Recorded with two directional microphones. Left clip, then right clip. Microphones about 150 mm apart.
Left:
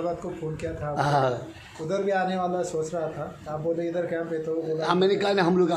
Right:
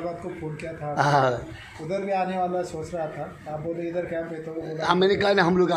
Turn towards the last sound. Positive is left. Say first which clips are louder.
# right 2 dB
turn(degrees=0)  # may be behind; listen again after turning